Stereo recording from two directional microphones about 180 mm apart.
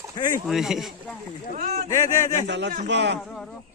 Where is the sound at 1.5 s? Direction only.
50° right (ahead or behind).